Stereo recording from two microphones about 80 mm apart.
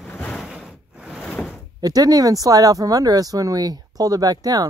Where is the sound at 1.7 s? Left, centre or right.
Right.